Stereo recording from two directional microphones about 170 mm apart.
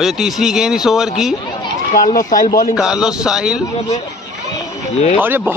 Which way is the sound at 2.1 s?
50° left (ahead or behind).